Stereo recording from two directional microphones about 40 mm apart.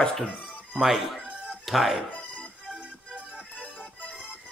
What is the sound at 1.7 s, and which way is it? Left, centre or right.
Speech, centre.